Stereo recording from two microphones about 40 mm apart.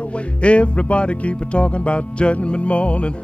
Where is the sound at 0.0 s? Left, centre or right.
Left.